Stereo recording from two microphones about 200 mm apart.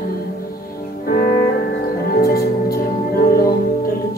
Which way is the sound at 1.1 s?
40° left (ahead or behind).